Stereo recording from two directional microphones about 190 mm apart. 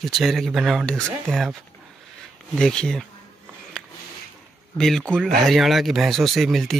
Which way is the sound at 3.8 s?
5° left (ahead or behind).